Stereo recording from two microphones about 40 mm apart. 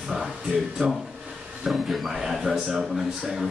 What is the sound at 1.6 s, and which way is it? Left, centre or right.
Speech, centre.